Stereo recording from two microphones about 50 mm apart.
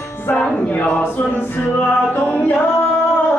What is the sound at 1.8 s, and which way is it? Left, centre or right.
Music, left.